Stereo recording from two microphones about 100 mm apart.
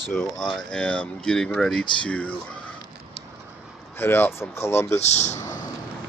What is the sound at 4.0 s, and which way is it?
Speech, 20° left (ahead or behind).